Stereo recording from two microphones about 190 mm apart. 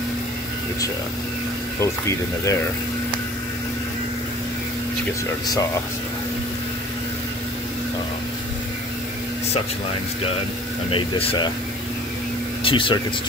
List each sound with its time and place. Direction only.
1.8 s speech: 15° left (ahead or behind)
10.9 s speech: 30° left (ahead or behind)
12.6 s speech: 25° left (ahead or behind)